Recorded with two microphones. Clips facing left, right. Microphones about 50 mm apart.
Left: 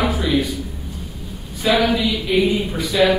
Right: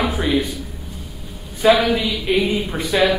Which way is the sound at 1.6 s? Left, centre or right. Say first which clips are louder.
Right 4 dB; right.